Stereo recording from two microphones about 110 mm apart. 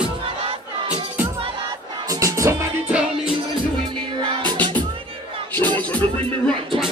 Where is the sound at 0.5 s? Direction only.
60° right (ahead or behind).